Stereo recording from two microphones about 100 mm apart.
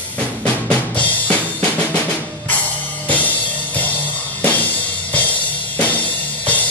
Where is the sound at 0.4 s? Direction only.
15° left (ahead or behind).